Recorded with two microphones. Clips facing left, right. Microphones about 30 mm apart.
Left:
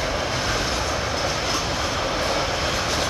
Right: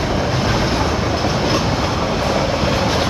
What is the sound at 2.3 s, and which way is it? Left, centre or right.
Train, centre.